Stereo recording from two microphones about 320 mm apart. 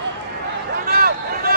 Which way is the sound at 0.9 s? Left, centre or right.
Right.